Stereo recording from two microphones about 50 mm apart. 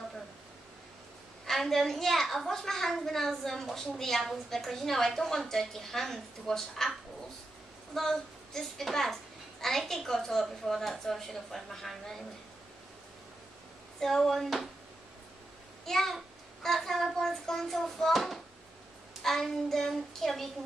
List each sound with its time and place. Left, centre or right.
1.4 s a woman's voice: centre
7.9 s a child's voice: centre
13.9 s a child's voice: centre
15.8 s a child's voice: centre